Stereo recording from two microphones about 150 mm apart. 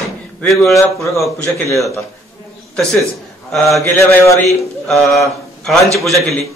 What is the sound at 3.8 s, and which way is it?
Mantra, 20° left (ahead or behind).